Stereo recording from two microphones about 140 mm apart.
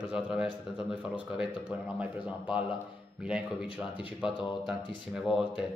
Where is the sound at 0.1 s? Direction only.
5° right (ahead or behind).